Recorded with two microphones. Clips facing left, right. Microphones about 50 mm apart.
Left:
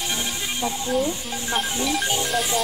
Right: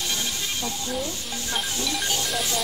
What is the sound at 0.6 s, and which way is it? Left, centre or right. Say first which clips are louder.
Music: left 5 dB; left.